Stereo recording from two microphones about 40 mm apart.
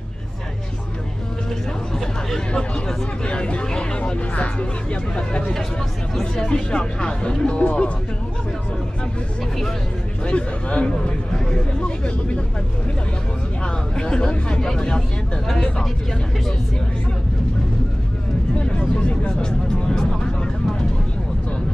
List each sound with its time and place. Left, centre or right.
3.3 s speech: left
10.2 s speech: left
13.9 s speech: left
15.4 s speech: centre
18.6 s a sound: left